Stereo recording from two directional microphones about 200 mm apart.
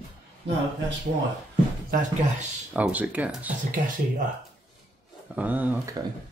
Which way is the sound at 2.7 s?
5° right (ahead or behind).